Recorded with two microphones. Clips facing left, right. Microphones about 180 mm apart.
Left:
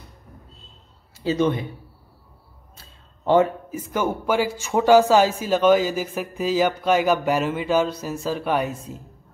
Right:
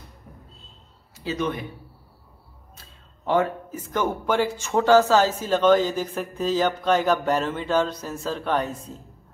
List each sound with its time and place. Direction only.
1.2 s speech: 25° left (ahead or behind)
3.7 s speech: 10° left (ahead or behind)